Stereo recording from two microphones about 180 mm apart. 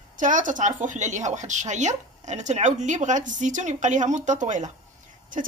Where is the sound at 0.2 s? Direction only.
45° right (ahead or behind).